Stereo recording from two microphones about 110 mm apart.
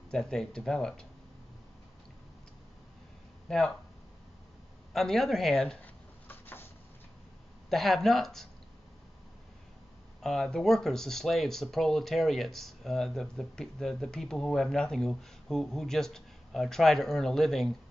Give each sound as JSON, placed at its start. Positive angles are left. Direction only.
{"t": 0.1, "sound": "speech", "side_deg": 5}
{"t": 3.4, "sound": "speech", "side_deg": 5}
{"t": 4.9, "sound": "speech", "side_deg": 5}
{"t": 6.2, "sound": "a sound", "side_deg": 20}
{"t": 7.7, "sound": "speech", "side_deg": 0}
{"t": 10.2, "sound": "speech", "side_deg": 5}